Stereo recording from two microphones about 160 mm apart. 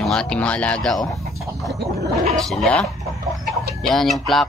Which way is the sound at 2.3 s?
5° left (ahead or behind).